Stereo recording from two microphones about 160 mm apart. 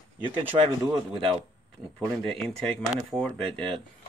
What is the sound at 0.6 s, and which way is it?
Speech, 35° right (ahead or behind).